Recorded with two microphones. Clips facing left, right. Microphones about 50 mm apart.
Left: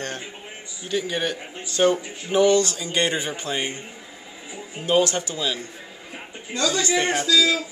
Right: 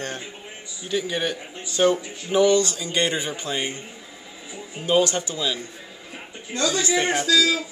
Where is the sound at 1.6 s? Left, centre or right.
Centre.